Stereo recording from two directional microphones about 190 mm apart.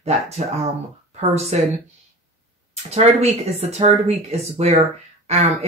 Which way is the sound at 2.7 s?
35° right (ahead or behind).